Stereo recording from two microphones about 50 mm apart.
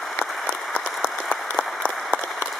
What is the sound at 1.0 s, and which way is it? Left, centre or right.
Applause, centre.